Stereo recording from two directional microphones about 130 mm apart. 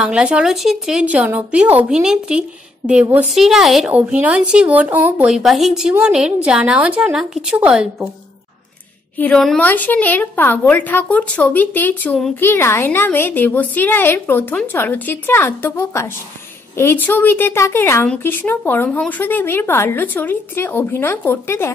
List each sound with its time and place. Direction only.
0.0 s speech: 5° right (ahead or behind)
9.2 s a woman's voice: 5° left (ahead or behind); by 21.7 s 20° left (ahead or behind)